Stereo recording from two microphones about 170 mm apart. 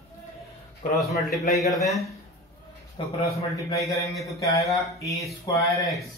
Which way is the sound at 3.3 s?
20° left (ahead or behind).